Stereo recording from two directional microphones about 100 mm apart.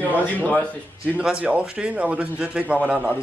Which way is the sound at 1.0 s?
10° right (ahead or behind).